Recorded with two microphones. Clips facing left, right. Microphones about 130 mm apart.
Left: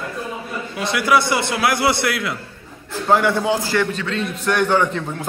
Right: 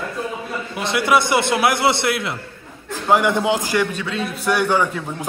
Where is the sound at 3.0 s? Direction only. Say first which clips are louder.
Even; 15° right (ahead or behind).